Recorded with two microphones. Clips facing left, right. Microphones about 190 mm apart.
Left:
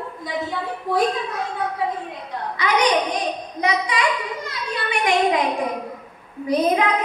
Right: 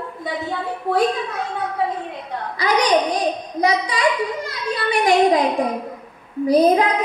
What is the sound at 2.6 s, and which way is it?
A woman's voice, 35° right (ahead or behind).